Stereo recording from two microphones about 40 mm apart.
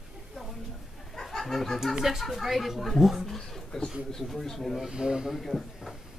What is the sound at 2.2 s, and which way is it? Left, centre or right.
Speech, centre.